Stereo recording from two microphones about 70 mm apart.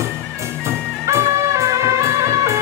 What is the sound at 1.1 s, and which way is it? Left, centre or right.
Music, right.